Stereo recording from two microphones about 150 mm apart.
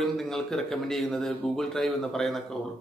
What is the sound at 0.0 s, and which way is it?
Speech, centre (ahead or behind).